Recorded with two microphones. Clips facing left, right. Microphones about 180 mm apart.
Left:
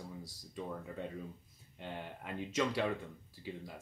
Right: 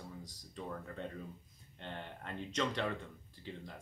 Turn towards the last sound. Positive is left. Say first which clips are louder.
# left 2 dB
turn(degrees=10)  # may be behind; listen again after turning